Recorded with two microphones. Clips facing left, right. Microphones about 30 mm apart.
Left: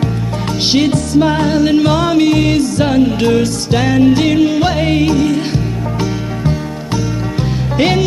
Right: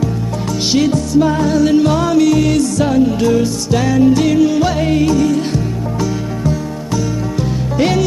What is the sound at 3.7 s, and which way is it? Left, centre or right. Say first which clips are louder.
Music: left 1 dB; left.